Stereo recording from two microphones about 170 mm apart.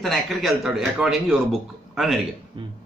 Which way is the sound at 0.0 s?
Centre (ahead or behind).